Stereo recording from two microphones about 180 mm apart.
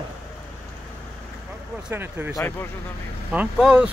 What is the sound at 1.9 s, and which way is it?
Speech, 10° right (ahead or behind).